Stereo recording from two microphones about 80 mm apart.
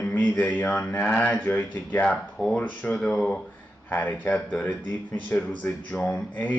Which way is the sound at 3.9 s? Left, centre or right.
Left.